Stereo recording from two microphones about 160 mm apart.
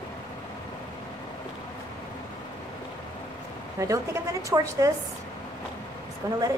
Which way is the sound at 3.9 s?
20° right (ahead or behind).